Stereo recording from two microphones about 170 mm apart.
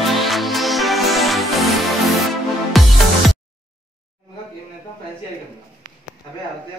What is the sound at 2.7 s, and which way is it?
Music, centre (ahead or behind).